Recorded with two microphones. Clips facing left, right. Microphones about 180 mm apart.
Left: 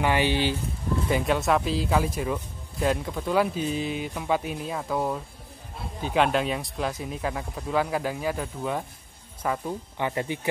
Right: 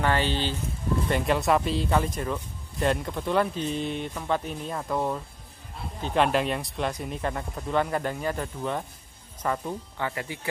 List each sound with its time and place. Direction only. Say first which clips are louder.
0.0 s speech: left 2 dB; 15° left (ahead or behind)
1.0 s speech: left 1 dB; centre (ahead or behind)
9.9 s speech: left 4 dB; 20° left (ahead or behind)